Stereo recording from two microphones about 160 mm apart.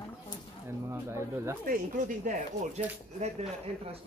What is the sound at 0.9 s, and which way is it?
Speech, 15° right (ahead or behind).